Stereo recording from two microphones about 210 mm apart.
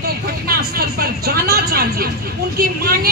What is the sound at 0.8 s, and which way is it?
Speech, 45° right (ahead or behind).